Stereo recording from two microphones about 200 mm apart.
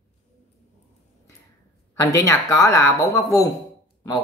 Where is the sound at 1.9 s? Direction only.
15° left (ahead or behind).